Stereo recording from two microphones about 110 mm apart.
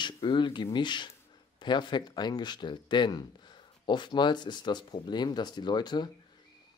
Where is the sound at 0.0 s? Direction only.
45° left (ahead or behind).